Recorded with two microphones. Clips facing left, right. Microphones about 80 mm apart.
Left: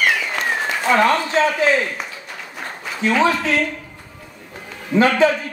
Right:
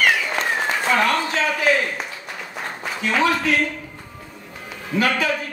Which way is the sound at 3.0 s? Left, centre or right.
Left.